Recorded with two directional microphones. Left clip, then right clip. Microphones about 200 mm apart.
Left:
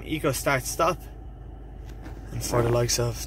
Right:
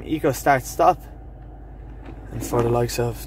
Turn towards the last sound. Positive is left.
turn(degrees=-10)  # may be behind; listen again after turning